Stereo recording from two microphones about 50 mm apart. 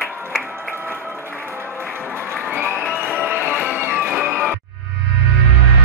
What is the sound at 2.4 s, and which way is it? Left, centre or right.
Crowd, right.